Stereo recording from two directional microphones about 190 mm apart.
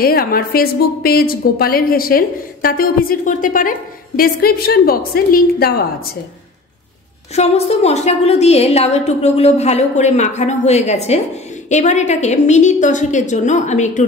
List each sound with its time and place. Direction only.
0.0 s a woman's voice: 50° left (ahead or behind)
7.3 s a woman's voice: 35° left (ahead or behind)